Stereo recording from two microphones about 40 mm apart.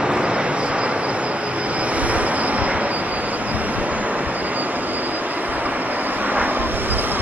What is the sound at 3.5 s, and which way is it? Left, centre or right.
Train, right.